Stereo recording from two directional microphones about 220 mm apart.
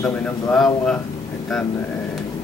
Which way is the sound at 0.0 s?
5° left (ahead or behind).